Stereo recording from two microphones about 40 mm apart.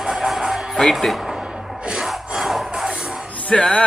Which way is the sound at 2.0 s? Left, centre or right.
Centre.